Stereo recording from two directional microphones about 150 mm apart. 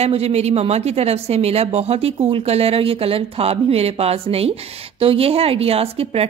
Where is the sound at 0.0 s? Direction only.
45° right (ahead or behind).